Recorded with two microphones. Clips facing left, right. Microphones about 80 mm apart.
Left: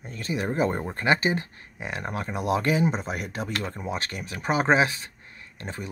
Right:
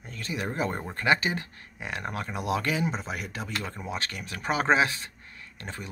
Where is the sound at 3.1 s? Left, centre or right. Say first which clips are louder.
Left 3 dB; left.